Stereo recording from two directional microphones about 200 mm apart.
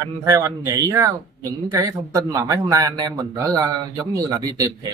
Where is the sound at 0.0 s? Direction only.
15° right (ahead or behind).